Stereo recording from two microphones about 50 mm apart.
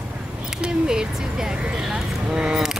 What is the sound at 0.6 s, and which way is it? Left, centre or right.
Speech, centre.